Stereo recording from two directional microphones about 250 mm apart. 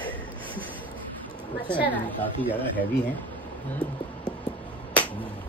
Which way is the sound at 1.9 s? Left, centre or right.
Centre.